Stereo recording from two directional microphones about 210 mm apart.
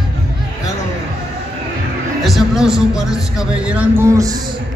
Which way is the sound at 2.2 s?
Centre (ahead or behind).